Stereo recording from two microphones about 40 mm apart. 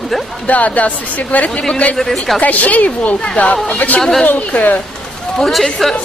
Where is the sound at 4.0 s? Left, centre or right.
Centre.